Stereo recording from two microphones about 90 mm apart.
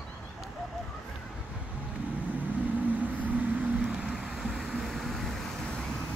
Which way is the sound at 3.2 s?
15° right (ahead or behind).